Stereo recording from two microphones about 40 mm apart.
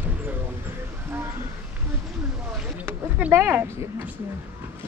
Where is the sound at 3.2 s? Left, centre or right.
Right.